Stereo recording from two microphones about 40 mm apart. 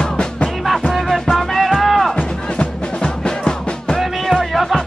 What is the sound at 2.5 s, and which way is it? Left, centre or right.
Music, left.